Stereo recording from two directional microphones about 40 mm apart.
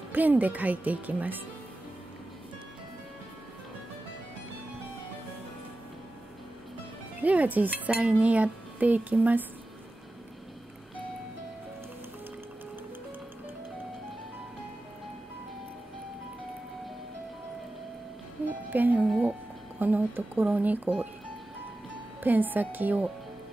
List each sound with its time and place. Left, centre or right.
0.1 s speech: right
7.2 s speech: right
7.9 s speech: right
18.7 s speech: right
22.2 s speech: right